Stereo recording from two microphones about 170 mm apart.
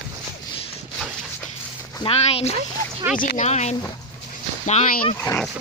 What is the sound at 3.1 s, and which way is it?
Speech, 50° left (ahead or behind).